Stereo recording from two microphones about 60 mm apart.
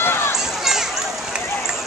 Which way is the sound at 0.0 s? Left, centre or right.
Left.